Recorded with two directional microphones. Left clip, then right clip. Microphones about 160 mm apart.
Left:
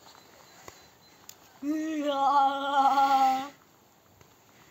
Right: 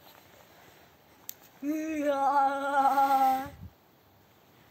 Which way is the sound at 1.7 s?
55° right (ahead or behind).